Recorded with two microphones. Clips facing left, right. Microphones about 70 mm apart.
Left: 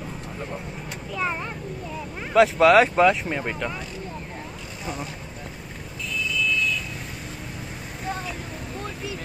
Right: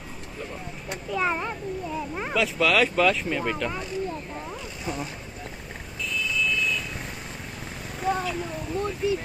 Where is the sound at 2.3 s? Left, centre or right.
Left.